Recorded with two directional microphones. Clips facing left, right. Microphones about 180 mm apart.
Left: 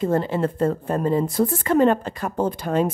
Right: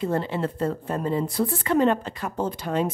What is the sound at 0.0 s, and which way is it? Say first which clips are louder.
A woman's voice: left 4 dB; 45° left (ahead or behind).